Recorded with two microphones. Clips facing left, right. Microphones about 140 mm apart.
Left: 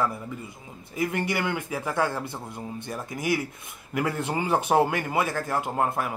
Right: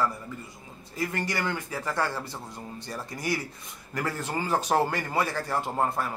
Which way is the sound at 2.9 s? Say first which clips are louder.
Left 1 dB; 5° left (ahead or behind).